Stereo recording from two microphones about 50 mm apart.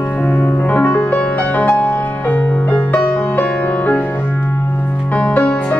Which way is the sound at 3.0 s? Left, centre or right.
Left.